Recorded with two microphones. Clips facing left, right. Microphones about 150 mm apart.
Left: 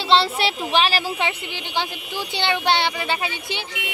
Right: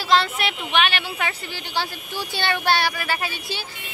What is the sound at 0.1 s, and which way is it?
Speech, 30° left (ahead or behind).